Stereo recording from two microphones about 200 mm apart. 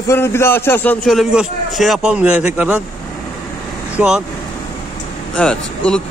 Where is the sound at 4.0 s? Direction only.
5° right (ahead or behind).